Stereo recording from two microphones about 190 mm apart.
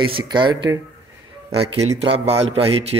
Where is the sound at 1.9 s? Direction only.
30° right (ahead or behind).